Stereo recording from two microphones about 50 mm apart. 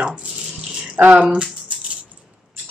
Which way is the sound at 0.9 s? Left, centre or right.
Right.